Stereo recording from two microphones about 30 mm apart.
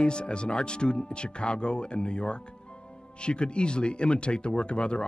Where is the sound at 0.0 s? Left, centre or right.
Left.